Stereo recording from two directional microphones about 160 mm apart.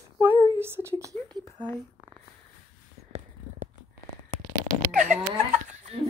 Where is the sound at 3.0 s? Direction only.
75° right (ahead or behind).